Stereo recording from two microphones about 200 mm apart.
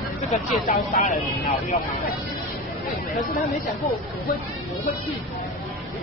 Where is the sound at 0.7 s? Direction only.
40° left (ahead or behind).